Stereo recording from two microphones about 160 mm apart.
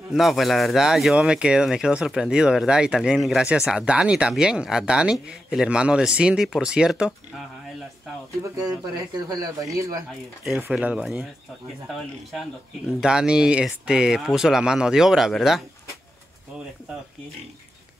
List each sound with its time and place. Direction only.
0.1 s speech: centre (ahead or behind)
8.5 s speech: 25° right (ahead or behind)
10.6 s speech: 5° right (ahead or behind)